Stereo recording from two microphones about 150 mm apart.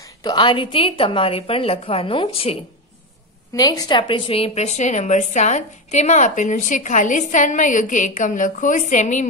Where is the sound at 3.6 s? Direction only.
25° left (ahead or behind).